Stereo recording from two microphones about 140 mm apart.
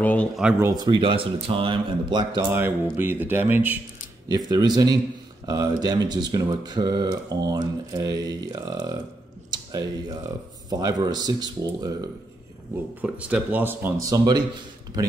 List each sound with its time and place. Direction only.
0.0 s speech: 10° left (ahead or behind)
0.7 s speech: 35° right (ahead or behind)
2.5 s speech: 15° right (ahead or behind)
4.3 s speech: 25° right (ahead or behind)
13.0 s speech: 10° right (ahead or behind); by 14.4 s 25° right (ahead or behind)